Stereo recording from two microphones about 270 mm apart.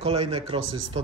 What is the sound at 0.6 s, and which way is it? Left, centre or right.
Speech, right.